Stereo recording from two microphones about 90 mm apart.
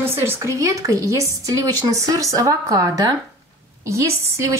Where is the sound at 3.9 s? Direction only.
30° right (ahead or behind).